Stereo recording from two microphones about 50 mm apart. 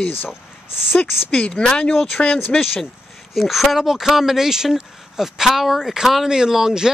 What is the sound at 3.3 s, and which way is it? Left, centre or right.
Speech, centre.